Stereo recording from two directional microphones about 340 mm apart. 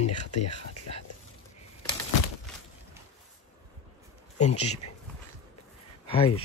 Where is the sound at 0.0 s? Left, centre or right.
Left.